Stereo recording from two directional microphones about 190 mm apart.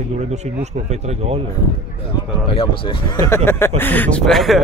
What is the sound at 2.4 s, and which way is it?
Speech, 30° left (ahead or behind).